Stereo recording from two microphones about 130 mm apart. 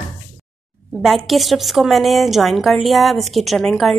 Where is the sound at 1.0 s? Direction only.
Centre (ahead or behind).